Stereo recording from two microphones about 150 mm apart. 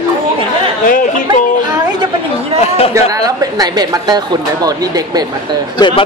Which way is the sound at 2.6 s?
40° left (ahead or behind).